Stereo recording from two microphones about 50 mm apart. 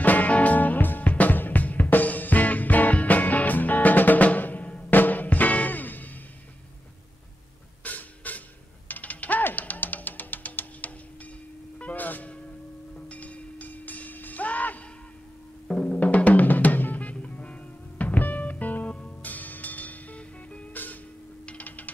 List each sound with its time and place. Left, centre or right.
0.0 s music: left
7.8 s music: left
15.9 s music: left
20.7 s music: left
21.5 s mechanisms: left